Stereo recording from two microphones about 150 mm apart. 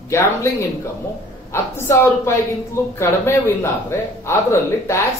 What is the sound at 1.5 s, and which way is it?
A man's voice, 15° left (ahead or behind).